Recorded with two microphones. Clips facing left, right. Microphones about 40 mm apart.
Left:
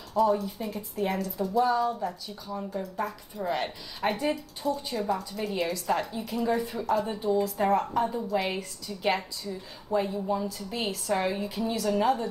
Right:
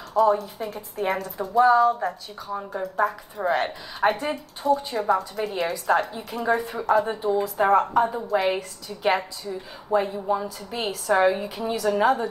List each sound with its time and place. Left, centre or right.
0.2 s speech: right
1.2 s a woman's voice: right
2.4 s speech: right
5.6 s a woman's voice: right
8.5 s a woman's voice: centre